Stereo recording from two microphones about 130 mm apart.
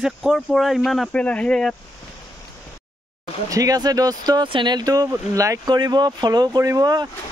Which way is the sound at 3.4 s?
25° right (ahead or behind).